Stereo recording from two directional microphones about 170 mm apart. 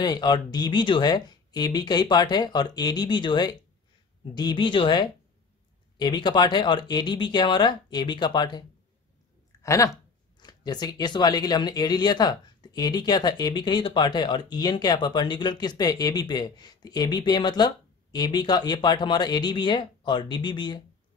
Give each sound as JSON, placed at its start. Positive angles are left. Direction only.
{"t": 0.0, "sound": "speech", "side_deg": 25}
{"t": 9.6, "sound": "a sound", "side_deg": 20}
{"t": 10.4, "sound": "speech", "side_deg": 25}